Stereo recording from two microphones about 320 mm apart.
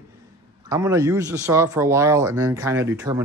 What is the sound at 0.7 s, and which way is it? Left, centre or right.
A man's voice, centre.